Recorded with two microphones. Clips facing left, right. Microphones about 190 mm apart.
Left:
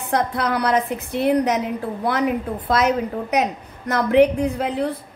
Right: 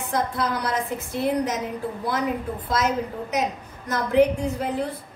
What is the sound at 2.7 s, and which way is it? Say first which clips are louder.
A woman's voice: left 5 dB; 65° left (ahead or behind).